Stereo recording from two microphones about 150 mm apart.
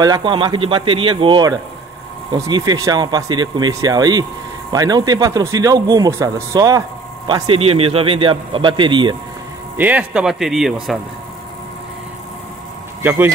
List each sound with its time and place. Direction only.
0.0 s a man's voice: 30° right (ahead or behind)
7.2 s a man's voice: 35° right (ahead or behind)
9.8 s speech: 10° right (ahead or behind)